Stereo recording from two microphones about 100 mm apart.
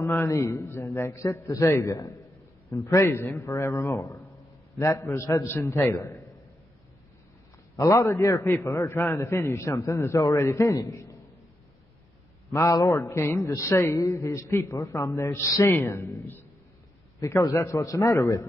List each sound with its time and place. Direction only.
0.0 s a man's voice: 20° left (ahead or behind)
0.3 s a man's voice: 30° left (ahead or behind)
7.7 s a man's voice: 35° left (ahead or behind)
12.4 s a man's voice: 35° left (ahead or behind)